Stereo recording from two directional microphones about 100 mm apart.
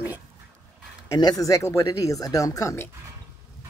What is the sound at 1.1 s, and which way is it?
Speech, 40° left (ahead or behind).